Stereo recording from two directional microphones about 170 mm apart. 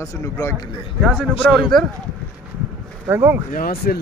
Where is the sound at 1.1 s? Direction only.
5° right (ahead or behind).